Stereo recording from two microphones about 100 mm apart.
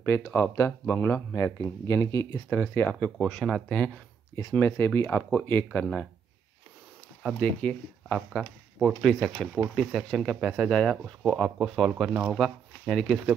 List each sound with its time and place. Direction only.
0.3 s speech: 25° left (ahead or behind)
2.5 s speech: 20° left (ahead or behind)
4.4 s speech: 25° left (ahead or behind)
7.3 s speech: 15° left (ahead or behind)
8.3 s speech: 5° right (ahead or behind)